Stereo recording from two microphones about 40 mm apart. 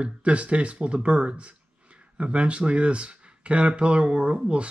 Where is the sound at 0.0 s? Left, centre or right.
Right.